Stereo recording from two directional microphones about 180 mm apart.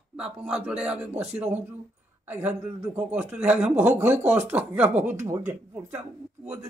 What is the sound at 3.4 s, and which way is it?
A man's voice, 10° right (ahead or behind).